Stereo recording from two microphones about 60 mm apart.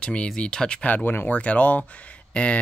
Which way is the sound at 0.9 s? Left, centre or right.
Left.